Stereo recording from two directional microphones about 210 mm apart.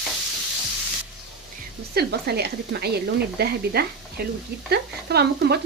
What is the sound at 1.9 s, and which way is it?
Speech, 50° right (ahead or behind).